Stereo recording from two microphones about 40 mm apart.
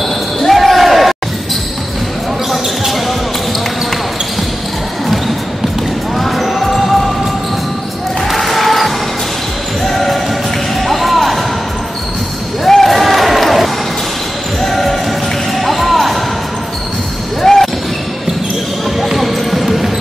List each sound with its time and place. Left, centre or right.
0.4 s basketball bounce: centre
2.5 s basketball bounce: centre
6.1 s music: centre
8.3 s basketball bounce: centre
10.9 s music: centre
12.6 s a sound: centre
14.6 s basketball bounce: centre
15.5 s music: centre
17.4 s basketball bounce: centre
18.9 s basketball bounce: centre